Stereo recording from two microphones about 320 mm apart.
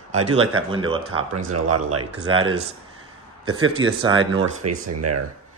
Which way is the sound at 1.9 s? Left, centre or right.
Right.